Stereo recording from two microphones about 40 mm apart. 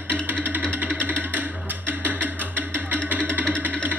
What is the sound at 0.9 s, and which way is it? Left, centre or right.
Music, right.